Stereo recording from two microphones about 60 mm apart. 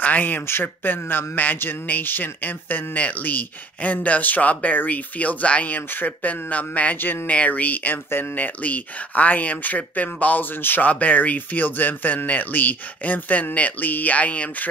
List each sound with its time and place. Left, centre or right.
0.0 s speech: left